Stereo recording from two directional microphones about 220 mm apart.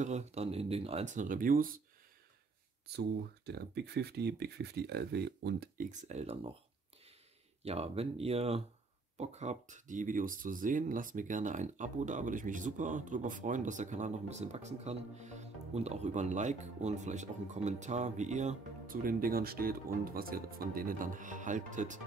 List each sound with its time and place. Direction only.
0.0 s speech: 30° right (ahead or behind)
2.9 s speech: 50° right (ahead or behind); by 6.5 s 25° right (ahead or behind)
7.6 s speech: 30° right (ahead or behind)